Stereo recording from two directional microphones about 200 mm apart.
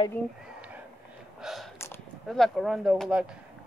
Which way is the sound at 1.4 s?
Centre (ahead or behind).